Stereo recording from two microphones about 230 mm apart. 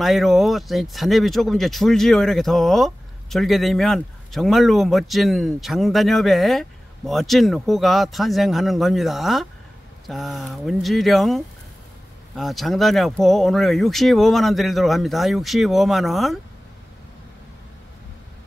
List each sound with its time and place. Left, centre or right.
0.0 s speech: centre